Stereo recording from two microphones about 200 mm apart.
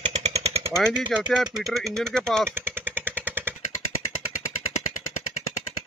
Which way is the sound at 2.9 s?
10° right (ahead or behind).